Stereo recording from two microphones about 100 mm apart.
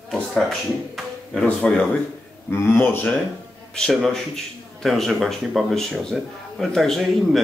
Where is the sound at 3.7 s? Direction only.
5° left (ahead or behind).